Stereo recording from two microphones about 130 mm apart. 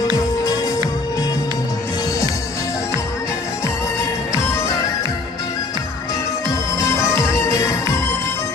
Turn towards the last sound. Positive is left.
turn(degrees=25)  # may be behind; listen again after turning